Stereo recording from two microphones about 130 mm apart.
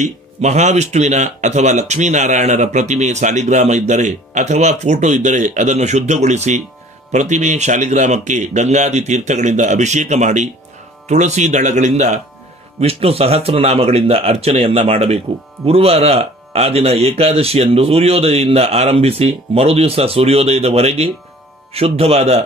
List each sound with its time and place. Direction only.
0.0 s speech: 60° right (ahead or behind)
12.8 s speech: 50° right (ahead or behind)